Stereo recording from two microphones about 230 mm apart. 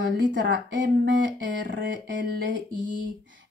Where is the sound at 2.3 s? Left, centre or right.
Right.